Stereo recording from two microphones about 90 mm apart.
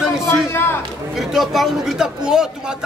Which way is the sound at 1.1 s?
Centre (ahead or behind).